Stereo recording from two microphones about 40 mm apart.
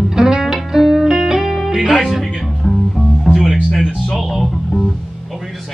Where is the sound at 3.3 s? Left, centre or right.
Centre.